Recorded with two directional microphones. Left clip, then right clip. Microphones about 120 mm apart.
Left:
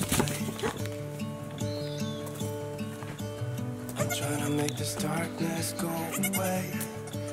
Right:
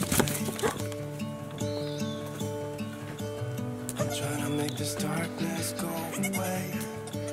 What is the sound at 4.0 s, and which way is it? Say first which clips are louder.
Speech: left 1 dB; centre (ahead or behind).